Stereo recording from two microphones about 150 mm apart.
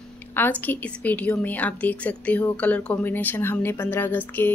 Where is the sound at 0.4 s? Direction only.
10° left (ahead or behind).